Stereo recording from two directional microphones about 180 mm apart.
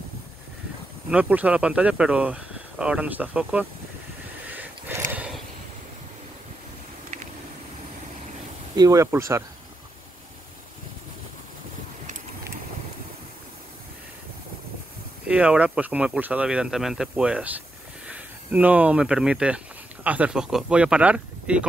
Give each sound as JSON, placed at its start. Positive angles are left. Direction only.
{"t": 1.1, "sound": "speech", "side_deg": -5}
{"t": 4.6, "sound": "a sound", "side_deg": -10}
{"t": 8.7, "sound": "speech", "side_deg": -20}
{"t": 15.2, "sound": "speech", "side_deg": -5}